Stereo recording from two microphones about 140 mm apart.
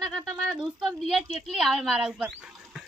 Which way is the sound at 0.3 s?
5° right (ahead or behind).